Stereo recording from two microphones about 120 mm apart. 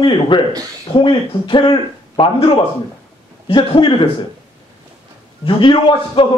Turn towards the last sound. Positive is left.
turn(degrees=45)  # may be behind; listen again after turning